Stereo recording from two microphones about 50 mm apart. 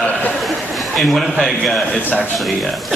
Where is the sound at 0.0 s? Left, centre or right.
Left.